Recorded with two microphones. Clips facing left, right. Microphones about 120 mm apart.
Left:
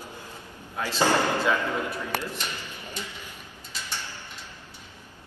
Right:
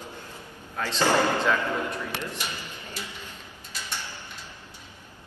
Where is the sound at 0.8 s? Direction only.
10° left (ahead or behind).